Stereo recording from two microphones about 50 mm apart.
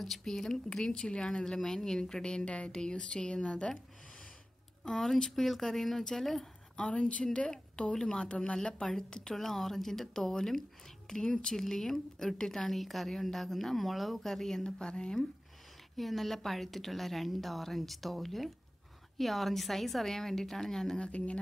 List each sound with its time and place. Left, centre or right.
0.0 s a woman's voice: centre
4.8 s a woman's voice: centre
6.8 s a woman's voice: left
16.0 s a woman's voice: centre